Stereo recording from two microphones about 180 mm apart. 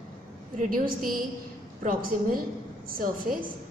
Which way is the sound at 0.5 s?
50° right (ahead or behind).